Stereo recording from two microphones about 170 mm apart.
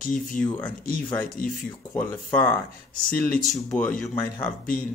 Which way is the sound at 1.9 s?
10° left (ahead or behind).